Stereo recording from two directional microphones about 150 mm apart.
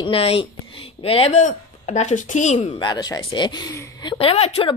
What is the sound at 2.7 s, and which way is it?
Speech, 30° left (ahead or behind).